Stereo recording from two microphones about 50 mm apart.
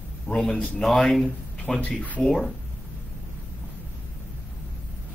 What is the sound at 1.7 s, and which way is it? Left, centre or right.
Speech, left.